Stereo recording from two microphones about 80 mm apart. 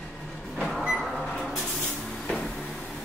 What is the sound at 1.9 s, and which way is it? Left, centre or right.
Vehicle, centre.